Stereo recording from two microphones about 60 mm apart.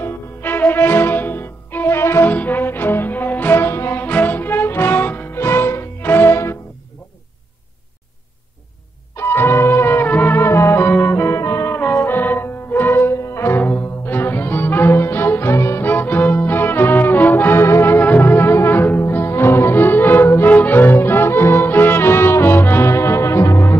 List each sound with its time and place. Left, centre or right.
0.0 s music: left
2.2 s music: left
4.0 s music: left
9.1 s music: left
10.9 s music: left
11.9 s music: left
12.9 s music: left
15.8 s music: left